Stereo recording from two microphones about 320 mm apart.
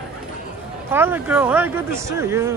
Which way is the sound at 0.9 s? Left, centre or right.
Centre.